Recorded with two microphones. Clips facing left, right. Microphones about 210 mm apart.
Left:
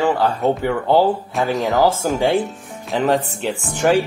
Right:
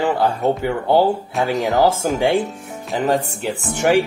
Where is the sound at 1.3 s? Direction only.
Centre (ahead or behind).